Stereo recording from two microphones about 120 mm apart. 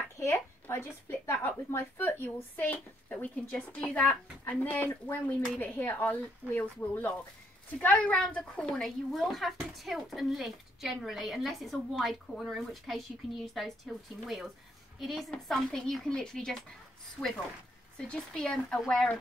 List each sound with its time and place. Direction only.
0.2 s a woman's voice: 25° left (ahead or behind); by 17.3 s 5° right (ahead or behind)
17.9 s speech: 5° left (ahead or behind)